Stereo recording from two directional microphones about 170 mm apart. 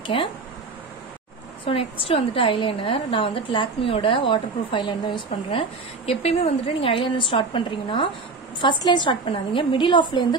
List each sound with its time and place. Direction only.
0.0 s speech: 30° left (ahead or behind)
1.6 s a woman's voice: 30° left (ahead or behind)